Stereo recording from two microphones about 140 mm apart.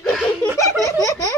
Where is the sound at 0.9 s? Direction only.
25° left (ahead or behind).